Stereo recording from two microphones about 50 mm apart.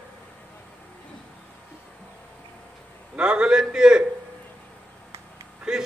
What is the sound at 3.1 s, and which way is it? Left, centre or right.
Speech, centre.